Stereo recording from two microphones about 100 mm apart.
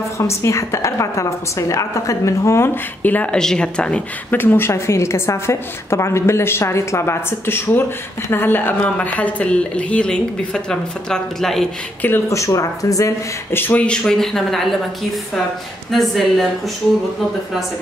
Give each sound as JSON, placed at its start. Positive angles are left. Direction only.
{"t": 0.2, "sound": "a woman's voice", "side_deg": 30}
{"t": 12.3, "sound": "speech", "side_deg": 30}
{"t": 13.6, "sound": "speech", "side_deg": 15}
{"t": 15.9, "sound": "speech", "side_deg": 0}